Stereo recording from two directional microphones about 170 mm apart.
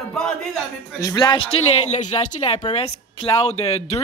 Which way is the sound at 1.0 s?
25° left (ahead or behind).